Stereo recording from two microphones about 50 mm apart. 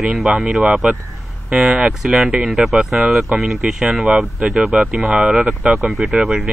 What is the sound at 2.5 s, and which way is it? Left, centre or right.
Speech, centre.